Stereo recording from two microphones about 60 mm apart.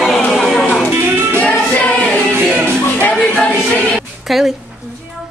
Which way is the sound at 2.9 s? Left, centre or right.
Left.